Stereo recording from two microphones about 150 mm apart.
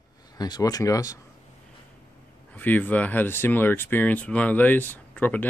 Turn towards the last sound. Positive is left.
turn(degrees=10)  # may be behind; listen again after turning